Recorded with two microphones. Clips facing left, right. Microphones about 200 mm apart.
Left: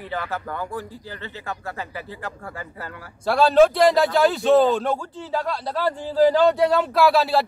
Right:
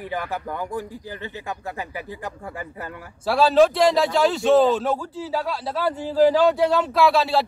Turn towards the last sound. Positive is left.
turn(degrees=0)  # may be behind; listen again after turning